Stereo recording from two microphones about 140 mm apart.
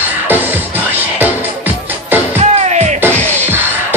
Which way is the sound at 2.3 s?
50° right (ahead or behind).